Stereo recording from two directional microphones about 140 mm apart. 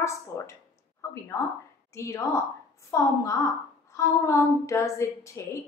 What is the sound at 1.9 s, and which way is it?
A woman's voice, 20° left (ahead or behind).